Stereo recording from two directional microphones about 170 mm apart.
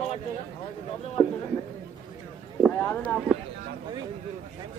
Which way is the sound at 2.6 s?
10° left (ahead or behind).